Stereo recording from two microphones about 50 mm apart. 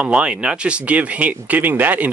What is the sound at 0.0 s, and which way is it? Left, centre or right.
Speech, centre.